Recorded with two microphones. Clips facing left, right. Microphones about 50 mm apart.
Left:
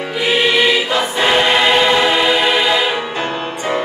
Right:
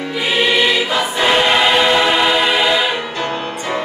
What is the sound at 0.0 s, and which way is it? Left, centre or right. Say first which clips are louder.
Choir: left 1 dB; centre.